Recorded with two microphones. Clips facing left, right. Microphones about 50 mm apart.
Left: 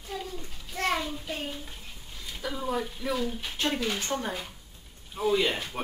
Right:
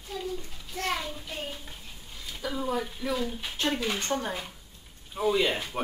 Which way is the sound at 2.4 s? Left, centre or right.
Centre.